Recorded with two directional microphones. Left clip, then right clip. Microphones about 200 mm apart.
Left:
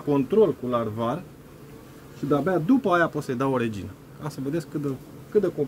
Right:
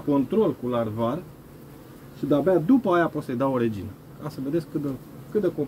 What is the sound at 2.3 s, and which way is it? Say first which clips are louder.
Speech: right 2 dB; 35° left (ahead or behind).